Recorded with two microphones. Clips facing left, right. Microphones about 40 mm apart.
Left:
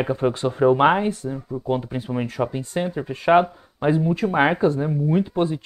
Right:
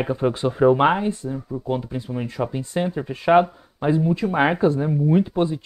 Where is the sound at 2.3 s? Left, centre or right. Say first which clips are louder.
Even; centre.